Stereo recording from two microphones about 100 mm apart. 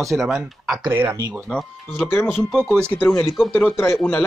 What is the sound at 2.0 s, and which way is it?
Speech, 25° left (ahead or behind).